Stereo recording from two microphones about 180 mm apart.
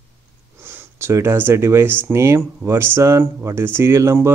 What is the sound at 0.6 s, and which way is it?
Speech, 15° right (ahead or behind).